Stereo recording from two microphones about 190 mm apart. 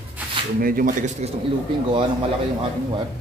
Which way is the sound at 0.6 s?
45° right (ahead or behind).